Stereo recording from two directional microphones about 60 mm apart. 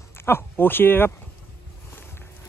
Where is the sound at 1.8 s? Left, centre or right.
Left.